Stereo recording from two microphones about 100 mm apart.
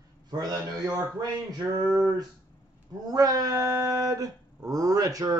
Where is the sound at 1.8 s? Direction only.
5° right (ahead or behind).